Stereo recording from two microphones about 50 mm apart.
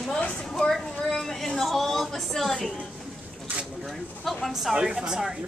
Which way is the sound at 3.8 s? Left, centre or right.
Centre.